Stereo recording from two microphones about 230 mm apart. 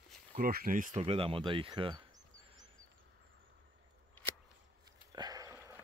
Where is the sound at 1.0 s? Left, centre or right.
Right.